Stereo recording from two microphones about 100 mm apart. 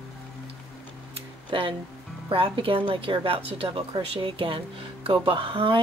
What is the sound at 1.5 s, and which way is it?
A woman's voice, 60° right (ahead or behind).